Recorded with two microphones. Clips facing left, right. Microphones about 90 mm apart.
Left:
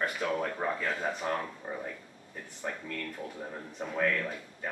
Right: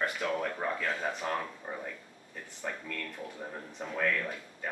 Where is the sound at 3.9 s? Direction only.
10° left (ahead or behind).